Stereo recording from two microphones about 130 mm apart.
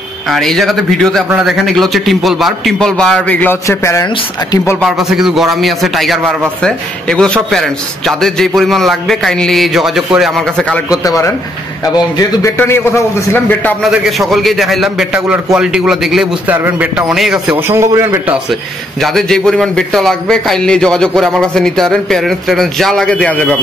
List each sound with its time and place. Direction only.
0.3 s a man's voice: centre (ahead or behind)
3.6 s a man's voice: 25° left (ahead or behind)
4.8 s a man's voice: 5° right (ahead or behind)
10.9 s a man's voice: 25° left (ahead or behind)
13.8 s a man's voice: centre (ahead or behind)
16.4 s a man's voice: 15° right (ahead or behind)
17.6 s a man's voice: 20° right (ahead or behind)
18.9 s a man's voice: centre (ahead or behind)